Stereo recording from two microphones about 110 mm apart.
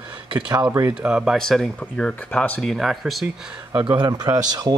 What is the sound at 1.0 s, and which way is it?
Speech, 5° right (ahead or behind).